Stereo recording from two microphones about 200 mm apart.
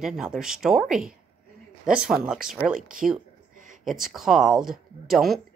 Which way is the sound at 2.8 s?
40° right (ahead or behind).